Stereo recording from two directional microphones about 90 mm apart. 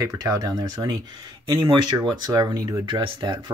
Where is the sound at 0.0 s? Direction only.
45° right (ahead or behind).